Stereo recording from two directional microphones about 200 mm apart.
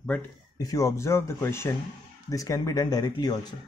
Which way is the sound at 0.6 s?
15° left (ahead or behind).